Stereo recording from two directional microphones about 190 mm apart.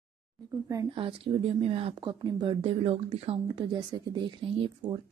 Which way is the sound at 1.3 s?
30° right (ahead or behind).